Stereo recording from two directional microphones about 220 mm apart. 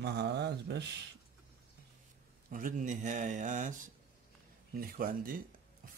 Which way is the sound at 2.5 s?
40° right (ahead or behind).